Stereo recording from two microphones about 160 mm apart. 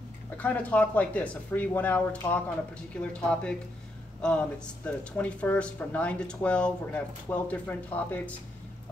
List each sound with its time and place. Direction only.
0.4 s speech: 10° left (ahead or behind)